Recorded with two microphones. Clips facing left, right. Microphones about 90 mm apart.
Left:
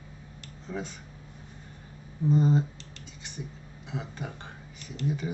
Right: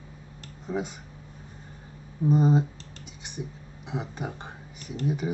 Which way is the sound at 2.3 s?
15° right (ahead or behind).